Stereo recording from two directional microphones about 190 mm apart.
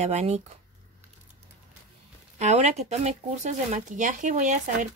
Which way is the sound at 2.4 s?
35° right (ahead or behind).